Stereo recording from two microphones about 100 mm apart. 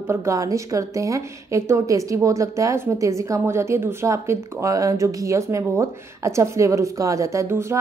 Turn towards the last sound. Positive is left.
turn(degrees=-25)  # may be behind; listen again after turning